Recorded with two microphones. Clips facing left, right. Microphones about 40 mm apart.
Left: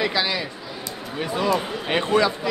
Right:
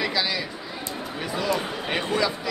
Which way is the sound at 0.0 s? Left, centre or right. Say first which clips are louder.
Left 3 dB; centre.